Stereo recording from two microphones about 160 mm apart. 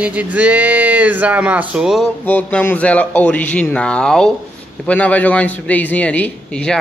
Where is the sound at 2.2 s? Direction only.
10° left (ahead or behind).